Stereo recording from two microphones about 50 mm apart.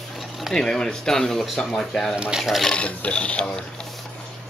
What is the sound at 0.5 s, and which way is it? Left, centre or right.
Speech, centre.